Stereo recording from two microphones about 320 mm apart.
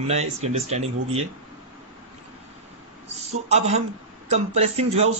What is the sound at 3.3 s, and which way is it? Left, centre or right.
Speech, centre.